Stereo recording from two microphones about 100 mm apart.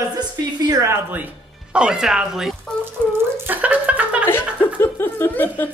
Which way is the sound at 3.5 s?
15° right (ahead or behind).